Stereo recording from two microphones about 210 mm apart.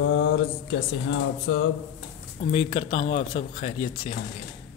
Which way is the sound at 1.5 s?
75° left (ahead or behind).